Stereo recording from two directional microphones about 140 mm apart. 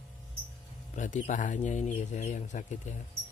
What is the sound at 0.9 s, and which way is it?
Speech, 65° left (ahead or behind).